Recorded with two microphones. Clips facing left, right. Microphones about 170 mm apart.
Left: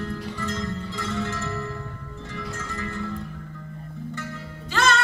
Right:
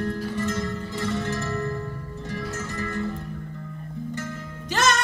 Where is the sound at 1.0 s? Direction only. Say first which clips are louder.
Right 3 dB; 15° right (ahead or behind).